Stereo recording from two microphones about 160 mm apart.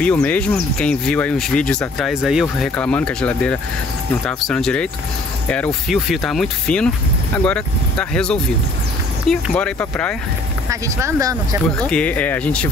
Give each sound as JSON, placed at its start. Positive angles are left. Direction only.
{"t": 0.0, "sound": "speech", "side_deg": 10}
{"t": 10.7, "sound": "speech", "side_deg": -20}
{"t": 11.8, "sound": "speech", "side_deg": 10}